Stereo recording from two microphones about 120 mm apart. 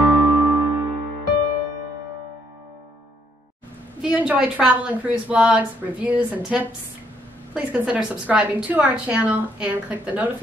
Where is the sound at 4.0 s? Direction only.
10° right (ahead or behind).